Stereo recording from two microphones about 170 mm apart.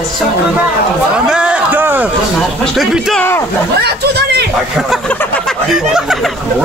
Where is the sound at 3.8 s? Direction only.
75° right (ahead or behind).